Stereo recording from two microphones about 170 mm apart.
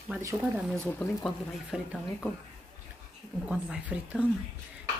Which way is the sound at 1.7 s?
5° right (ahead or behind).